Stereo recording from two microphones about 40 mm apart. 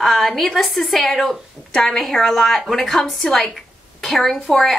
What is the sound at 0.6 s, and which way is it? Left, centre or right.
A woman's voice, centre.